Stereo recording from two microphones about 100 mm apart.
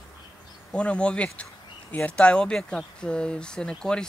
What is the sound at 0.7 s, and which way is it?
Speech, 10° left (ahead or behind).